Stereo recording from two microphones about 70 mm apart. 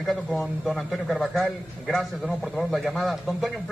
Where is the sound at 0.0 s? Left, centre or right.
Centre.